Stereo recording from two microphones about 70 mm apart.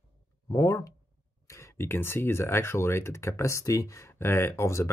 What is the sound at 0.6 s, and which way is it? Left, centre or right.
Speech, left.